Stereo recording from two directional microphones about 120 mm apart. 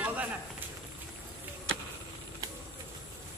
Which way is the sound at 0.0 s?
10° right (ahead or behind).